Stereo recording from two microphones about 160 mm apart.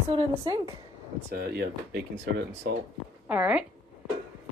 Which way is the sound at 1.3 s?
80° right.